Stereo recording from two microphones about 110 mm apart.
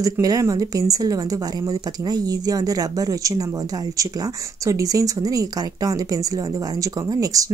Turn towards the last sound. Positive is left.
turn(degrees=-30)  # may be behind; listen again after turning